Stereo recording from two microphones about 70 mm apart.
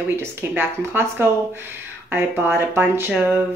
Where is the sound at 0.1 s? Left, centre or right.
Right.